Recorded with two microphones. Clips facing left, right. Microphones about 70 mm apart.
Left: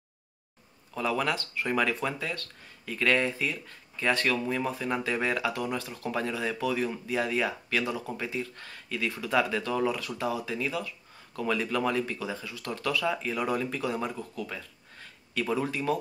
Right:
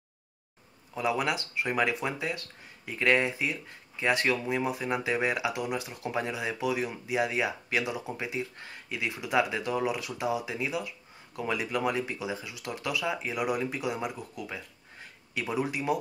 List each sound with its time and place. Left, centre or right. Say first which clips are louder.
0.9 s speech: even; centre